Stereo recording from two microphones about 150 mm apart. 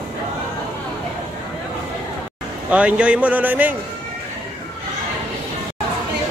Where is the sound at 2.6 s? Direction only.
10° right (ahead or behind).